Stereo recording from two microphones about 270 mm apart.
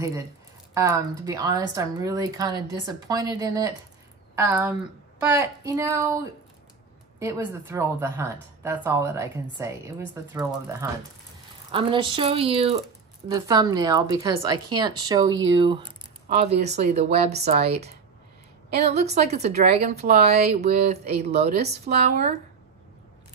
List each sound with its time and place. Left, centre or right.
0.7 s speech: centre